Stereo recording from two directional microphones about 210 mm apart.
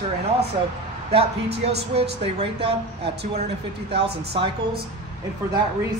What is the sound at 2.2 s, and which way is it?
Speech, 30° right (ahead or behind).